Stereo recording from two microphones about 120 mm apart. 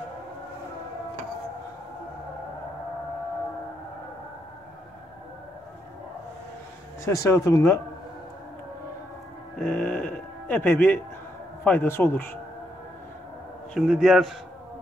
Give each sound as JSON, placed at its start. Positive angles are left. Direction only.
{"t": 7.1, "sound": "speech", "side_deg": 25}
{"t": 9.6, "sound": "music", "side_deg": 10}
{"t": 11.6, "sound": "speech", "side_deg": 15}
{"t": 13.7, "sound": "a man's voice", "side_deg": 0}